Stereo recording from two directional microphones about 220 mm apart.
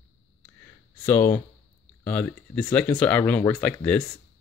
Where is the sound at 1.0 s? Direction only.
10° left (ahead or behind).